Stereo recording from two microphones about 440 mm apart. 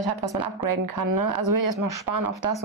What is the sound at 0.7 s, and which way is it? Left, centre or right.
Speech, right.